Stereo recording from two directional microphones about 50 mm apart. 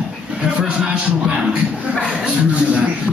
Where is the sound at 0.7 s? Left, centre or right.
Right.